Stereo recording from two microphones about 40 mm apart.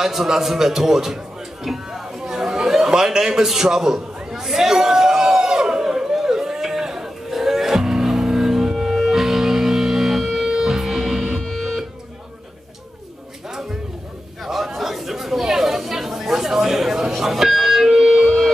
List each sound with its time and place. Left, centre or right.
0.0 s a man's voice: centre
2.0 s chatter: centre
10.5 s music: centre
13.5 s a sound: centre
14.4 s chatter: centre
18.1 s music: centre